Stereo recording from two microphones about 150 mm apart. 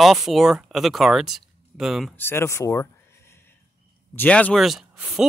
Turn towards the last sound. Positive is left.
turn(degrees=-5)  # may be behind; listen again after turning